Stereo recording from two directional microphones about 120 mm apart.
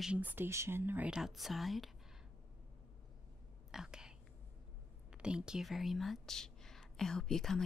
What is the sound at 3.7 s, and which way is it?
Whispering, 5° right (ahead or behind).